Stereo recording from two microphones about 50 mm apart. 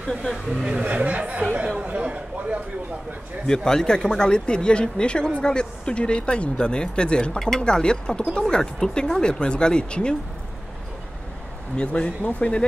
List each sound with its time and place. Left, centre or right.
0.0 s speech: centre
0.9 s speech: right
3.4 s speech: centre
11.7 s speech: left